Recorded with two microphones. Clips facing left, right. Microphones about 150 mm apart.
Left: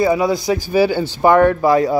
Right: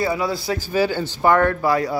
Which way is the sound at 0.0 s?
20° left (ahead or behind).